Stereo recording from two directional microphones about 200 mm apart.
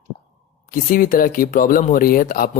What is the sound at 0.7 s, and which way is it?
Speech, 45° left (ahead or behind).